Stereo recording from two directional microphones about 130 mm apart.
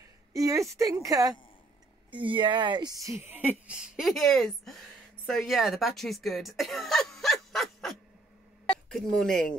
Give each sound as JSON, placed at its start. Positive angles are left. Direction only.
{"t": 0.3, "sound": "speech", "side_deg": -25}
{"t": 2.0, "sound": "speech", "side_deg": -40}
{"t": 3.2, "sound": "speech", "side_deg": -15}